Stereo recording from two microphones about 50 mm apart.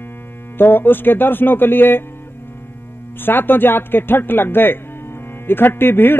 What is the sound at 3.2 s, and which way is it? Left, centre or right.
Speech, left.